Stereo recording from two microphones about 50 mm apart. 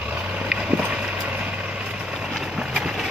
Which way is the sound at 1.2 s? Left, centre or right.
Right.